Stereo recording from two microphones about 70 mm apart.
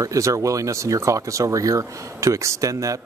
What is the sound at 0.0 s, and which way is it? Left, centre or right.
Speech, right.